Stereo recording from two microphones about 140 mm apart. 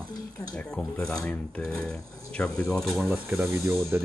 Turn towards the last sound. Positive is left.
turn(degrees=-20)  # may be behind; listen again after turning